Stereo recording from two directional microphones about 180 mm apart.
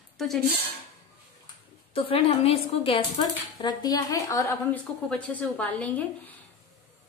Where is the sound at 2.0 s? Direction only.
35° left (ahead or behind); by 6.3 s 10° left (ahead or behind).